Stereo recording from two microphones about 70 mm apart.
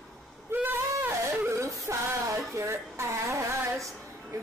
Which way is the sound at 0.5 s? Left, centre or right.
Right.